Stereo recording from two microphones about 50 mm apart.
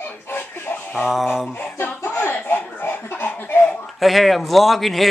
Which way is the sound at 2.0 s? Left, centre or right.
Left.